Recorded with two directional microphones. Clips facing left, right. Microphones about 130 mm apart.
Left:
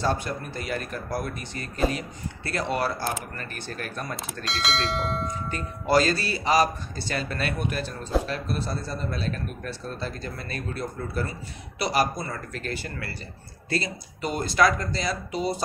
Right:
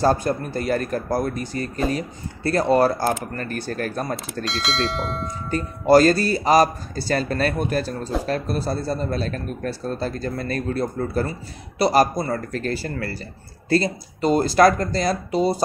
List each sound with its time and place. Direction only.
0.0 s speech: 40° right (ahead or behind)
4.5 s speech: centre (ahead or behind)
5.5 s speech: 40° right (ahead or behind)